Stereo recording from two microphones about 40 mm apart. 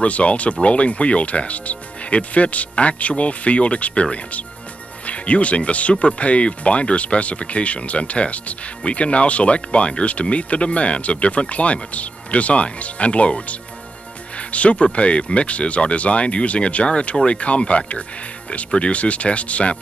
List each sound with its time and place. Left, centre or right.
0.0 s speech: left